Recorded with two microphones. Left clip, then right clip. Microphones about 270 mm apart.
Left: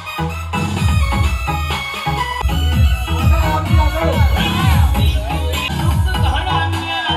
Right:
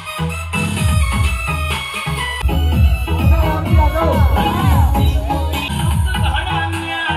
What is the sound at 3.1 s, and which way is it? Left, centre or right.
Music, right.